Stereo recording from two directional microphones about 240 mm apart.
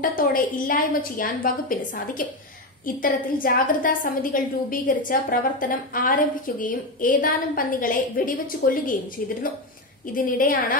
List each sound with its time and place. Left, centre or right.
0.0 s a woman's voice: left
10.1 s a woman's voice: left